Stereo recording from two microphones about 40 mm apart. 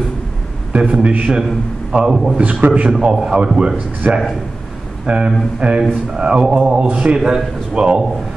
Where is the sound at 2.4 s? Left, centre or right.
Right.